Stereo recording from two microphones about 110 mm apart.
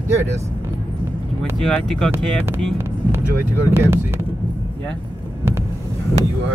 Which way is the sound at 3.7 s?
20° right (ahead or behind).